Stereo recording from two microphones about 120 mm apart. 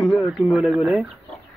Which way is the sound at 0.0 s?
Centre (ahead or behind).